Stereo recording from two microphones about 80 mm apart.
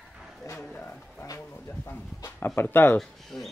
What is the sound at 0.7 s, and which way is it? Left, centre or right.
Speech, centre.